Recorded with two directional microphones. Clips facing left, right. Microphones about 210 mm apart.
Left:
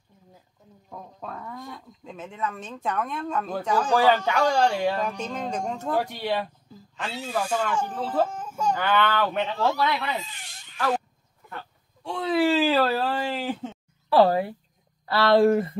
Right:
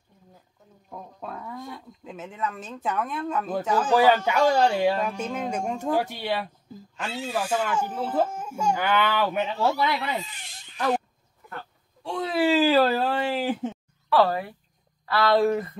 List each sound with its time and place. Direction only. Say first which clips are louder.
0.8 s speech: right 1 dB; 5° right (ahead or behind)
12.0 s a sound: left 1 dB; centre (ahead or behind)
14.0 s speech: left 3 dB; 30° left (ahead or behind)